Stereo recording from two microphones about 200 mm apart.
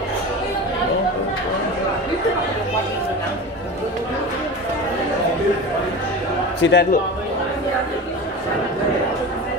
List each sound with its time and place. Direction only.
6.6 s a man's voice: 60° left (ahead or behind)